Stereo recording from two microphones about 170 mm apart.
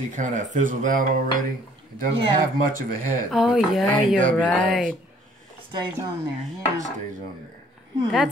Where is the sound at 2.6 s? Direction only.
55° right (ahead or behind).